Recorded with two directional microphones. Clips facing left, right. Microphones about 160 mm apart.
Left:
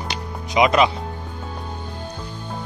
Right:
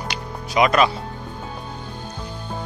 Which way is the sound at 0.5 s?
20° left (ahead or behind).